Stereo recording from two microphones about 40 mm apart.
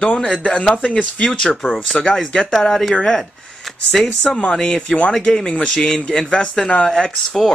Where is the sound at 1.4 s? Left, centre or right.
Centre.